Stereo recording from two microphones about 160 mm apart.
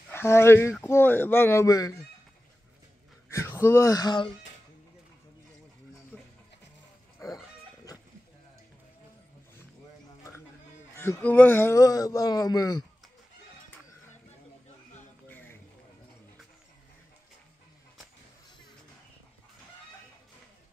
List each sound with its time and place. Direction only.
0.1 s speech: 15° left (ahead or behind)
3.3 s speech: 15° left (ahead or behind)
7.2 s livestock: 20° left (ahead or behind)
11.0 s speech: 10° left (ahead or behind)
15.2 s a sound: 10° left (ahead or behind)